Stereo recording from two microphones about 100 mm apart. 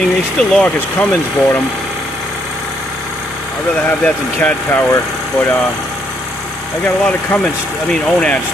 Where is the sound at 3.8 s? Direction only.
15° left (ahead or behind).